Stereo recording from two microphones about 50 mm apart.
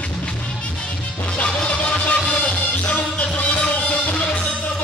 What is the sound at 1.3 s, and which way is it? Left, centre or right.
Music, left.